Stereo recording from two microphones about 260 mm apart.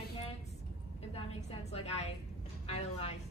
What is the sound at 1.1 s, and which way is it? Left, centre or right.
A woman's voice, left.